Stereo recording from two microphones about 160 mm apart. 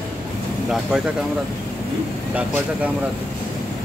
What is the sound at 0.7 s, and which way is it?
Speech, centre (ahead or behind).